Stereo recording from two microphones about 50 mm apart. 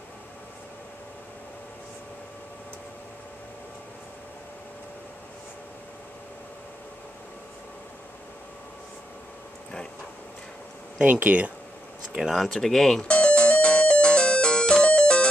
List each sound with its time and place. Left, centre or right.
11.0 s speech: right
12.4 s speech: centre
13.1 s music: left